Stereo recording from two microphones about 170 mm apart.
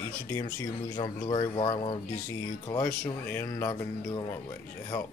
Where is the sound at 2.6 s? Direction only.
20° left (ahead or behind).